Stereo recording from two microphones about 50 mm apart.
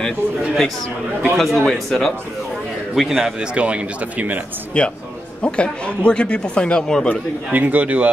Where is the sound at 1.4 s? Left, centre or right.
Centre.